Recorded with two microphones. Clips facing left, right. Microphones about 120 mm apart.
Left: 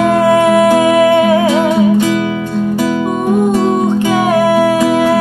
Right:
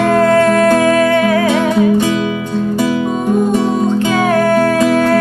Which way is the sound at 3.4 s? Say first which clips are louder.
Left 2 dB; 15° left (ahead or behind).